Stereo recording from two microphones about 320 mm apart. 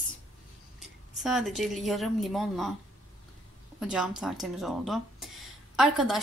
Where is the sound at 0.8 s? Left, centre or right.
Centre.